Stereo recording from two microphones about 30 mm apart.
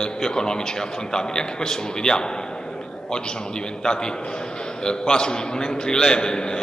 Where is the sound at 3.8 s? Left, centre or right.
Left.